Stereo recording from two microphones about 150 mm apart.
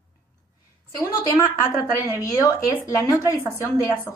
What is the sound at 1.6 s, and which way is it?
A woman's voice, 20° left (ahead or behind).